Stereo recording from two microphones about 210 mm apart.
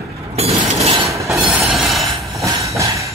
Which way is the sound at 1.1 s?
15° right (ahead or behind).